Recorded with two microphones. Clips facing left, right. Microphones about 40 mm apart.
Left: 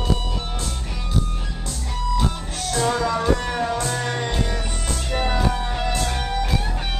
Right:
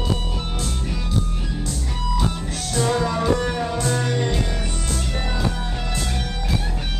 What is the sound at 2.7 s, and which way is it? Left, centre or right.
Music, centre.